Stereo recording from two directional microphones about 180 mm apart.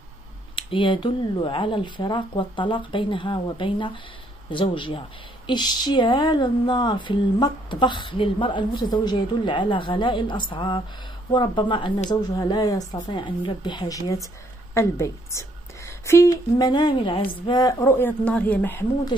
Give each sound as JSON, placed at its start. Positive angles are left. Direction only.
{"t": 0.6, "sound": "a woman's voice", "side_deg": 25}